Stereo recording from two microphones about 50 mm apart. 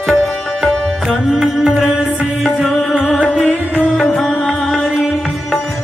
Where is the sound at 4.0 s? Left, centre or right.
Left.